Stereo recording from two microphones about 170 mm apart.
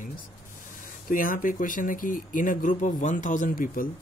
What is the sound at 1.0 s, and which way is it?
Speech, 55° left (ahead or behind).